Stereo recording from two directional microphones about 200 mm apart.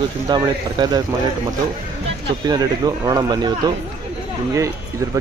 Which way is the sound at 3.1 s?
20° right (ahead or behind).